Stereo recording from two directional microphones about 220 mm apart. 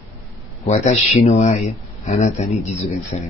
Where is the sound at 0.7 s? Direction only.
30° left (ahead or behind).